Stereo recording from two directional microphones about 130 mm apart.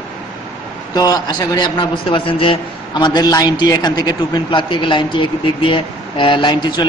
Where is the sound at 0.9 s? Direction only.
30° left (ahead or behind).